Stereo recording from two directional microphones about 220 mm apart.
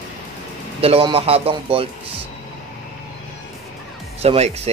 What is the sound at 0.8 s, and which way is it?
Speech, 25° right (ahead or behind).